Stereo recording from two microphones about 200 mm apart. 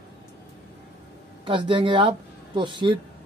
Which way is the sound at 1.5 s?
25° right (ahead or behind).